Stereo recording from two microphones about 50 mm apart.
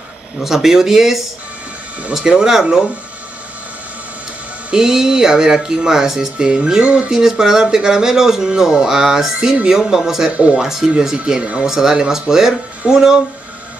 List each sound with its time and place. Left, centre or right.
0.4 s speech: centre
4.6 s speech: centre
6.3 s music: centre
7.1 s speech: centre
10.3 s music: right
10.6 s speech: centre
10.9 s speech: centre